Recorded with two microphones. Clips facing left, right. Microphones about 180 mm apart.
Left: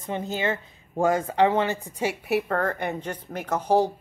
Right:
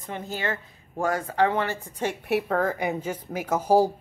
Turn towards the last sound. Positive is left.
turn(degrees=-10)  # may be behind; listen again after turning